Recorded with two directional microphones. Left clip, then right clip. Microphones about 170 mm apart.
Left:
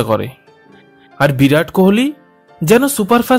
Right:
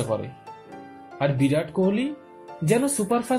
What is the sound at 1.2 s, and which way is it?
Speech, 40° left (ahead or behind).